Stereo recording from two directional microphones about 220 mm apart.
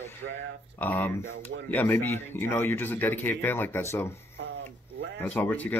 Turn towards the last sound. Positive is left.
turn(degrees=10)  # may be behind; listen again after turning